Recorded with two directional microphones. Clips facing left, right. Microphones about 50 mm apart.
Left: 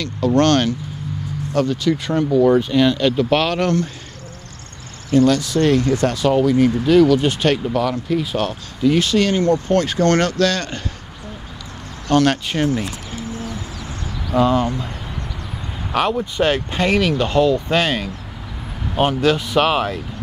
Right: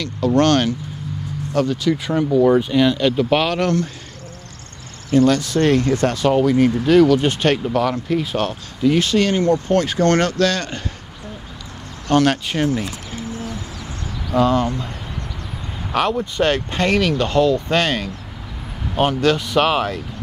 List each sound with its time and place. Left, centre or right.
0.0 s speech: centre
3.5 s speech: centre
5.1 s speech: right
7.2 s speech: right
9.0 s speech: right
12.3 s speech: centre
14.3 s speech: centre
15.9 s speech: centre